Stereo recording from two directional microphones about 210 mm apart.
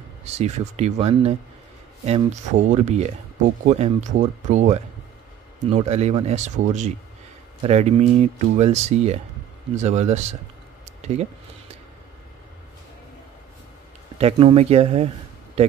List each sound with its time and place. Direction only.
0.2 s speech: 30° right (ahead or behind)
5.8 s speech: 30° right (ahead or behind)
10.9 s a sound: 30° right (ahead or behind)
14.1 s speech: 25° right (ahead or behind)